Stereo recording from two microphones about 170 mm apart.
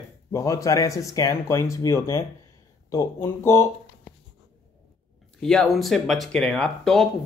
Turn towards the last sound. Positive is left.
turn(degrees=5)  # may be behind; listen again after turning